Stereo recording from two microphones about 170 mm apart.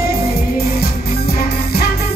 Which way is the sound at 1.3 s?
65° left (ahead or behind).